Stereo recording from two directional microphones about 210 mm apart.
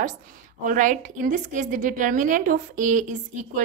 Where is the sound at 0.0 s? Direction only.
40° right (ahead or behind).